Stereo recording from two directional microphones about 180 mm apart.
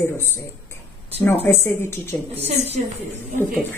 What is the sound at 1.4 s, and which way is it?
Speech, 15° left (ahead or behind).